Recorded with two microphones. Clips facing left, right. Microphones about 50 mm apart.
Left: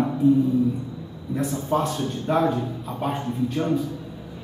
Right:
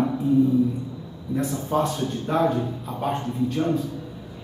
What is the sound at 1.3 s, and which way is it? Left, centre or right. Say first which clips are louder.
A man's voice: even; centre.